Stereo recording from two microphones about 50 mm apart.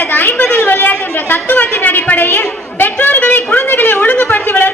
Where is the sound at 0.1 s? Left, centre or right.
Left.